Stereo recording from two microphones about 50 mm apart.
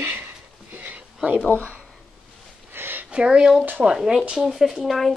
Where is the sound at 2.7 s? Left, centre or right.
Right.